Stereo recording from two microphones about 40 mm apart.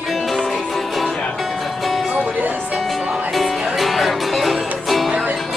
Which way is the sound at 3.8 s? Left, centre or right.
Centre.